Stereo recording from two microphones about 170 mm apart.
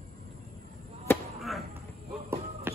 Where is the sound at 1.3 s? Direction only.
Centre (ahead or behind).